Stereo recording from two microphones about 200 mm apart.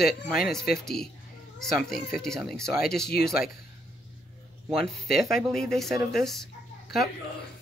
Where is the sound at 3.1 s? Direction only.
50° left (ahead or behind).